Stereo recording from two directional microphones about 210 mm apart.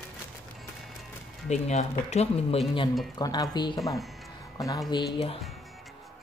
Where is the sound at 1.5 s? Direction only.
30° left (ahead or behind).